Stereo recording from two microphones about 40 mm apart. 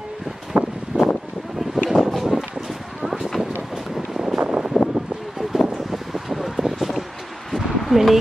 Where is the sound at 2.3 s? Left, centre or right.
Centre.